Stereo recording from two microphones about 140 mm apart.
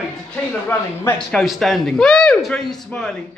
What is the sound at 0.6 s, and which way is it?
Speech, 10° left (ahead or behind).